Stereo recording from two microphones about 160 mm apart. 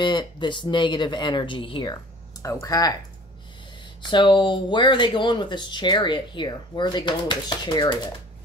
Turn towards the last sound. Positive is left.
turn(degrees=30)  # may be behind; listen again after turning